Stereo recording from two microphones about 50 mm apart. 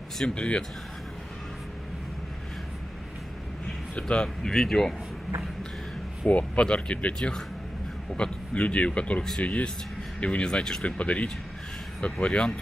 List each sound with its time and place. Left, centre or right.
0.2 s speech: centre
3.9 s speech: left
6.2 s speech: left
8.2 s speech: left
11.0 s speech: left